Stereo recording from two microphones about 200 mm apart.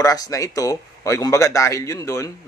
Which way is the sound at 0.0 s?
15° left (ahead or behind).